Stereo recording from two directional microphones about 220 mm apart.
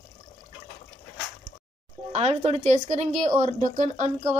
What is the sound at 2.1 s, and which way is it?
A child's voice, 30° right (ahead or behind).